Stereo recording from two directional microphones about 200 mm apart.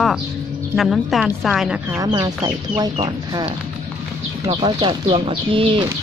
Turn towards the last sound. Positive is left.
turn(degrees=-20)  # may be behind; listen again after turning